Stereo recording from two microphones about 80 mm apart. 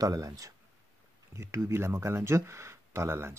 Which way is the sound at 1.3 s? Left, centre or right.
Right.